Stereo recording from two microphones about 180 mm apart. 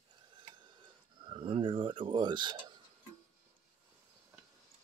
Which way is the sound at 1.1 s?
25° right (ahead or behind).